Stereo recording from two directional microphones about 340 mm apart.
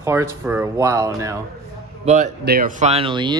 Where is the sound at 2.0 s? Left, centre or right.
Right.